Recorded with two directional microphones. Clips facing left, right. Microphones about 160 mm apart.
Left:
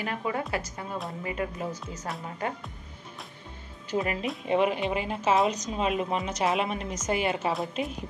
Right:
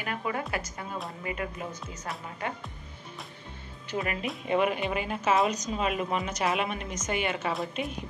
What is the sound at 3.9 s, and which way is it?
Speech, 25° left (ahead or behind).